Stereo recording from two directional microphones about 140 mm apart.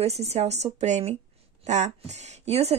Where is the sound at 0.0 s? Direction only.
50° right (ahead or behind).